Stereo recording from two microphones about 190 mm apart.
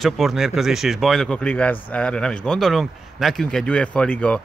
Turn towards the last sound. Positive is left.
turn(degrees=5)  # may be behind; listen again after turning